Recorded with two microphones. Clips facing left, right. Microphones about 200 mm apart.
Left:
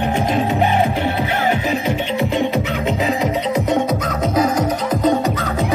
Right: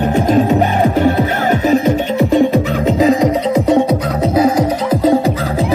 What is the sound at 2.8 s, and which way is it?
Music, 35° right (ahead or behind).